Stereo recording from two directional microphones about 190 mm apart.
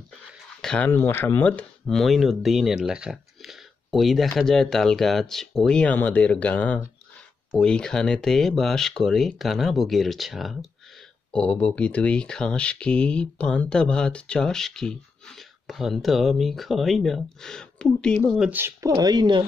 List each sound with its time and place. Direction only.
0.6 s speech: 5° left (ahead or behind)
18.5 s speech: 15° right (ahead or behind)